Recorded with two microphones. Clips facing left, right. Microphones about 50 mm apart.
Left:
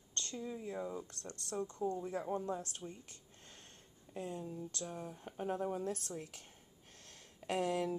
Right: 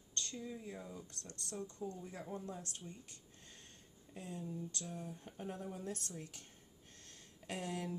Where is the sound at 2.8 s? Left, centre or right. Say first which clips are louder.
Left 5 dB; left.